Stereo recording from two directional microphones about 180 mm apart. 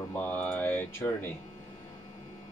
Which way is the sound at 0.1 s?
10° left (ahead or behind).